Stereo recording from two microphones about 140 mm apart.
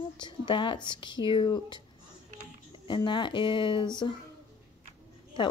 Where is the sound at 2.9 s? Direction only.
35° left (ahead or behind).